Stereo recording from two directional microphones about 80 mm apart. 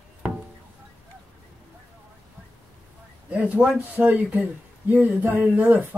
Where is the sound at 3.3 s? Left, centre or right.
Centre.